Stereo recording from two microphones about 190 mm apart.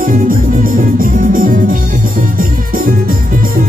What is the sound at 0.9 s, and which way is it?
Music, 45° right (ahead or behind).